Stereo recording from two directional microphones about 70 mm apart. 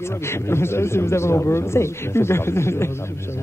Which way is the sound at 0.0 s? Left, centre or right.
Left.